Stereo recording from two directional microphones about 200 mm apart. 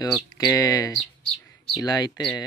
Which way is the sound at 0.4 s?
15° left (ahead or behind).